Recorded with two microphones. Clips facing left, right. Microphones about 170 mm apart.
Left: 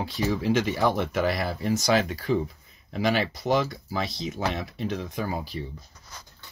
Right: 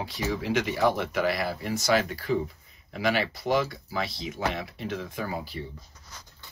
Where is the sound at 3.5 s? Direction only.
20° left (ahead or behind).